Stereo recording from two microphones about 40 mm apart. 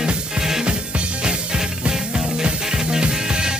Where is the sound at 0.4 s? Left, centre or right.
Centre.